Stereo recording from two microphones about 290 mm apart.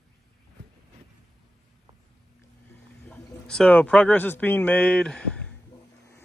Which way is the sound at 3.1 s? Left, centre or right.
Centre.